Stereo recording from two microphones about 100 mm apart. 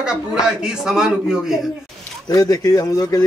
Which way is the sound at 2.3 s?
35° left (ahead or behind).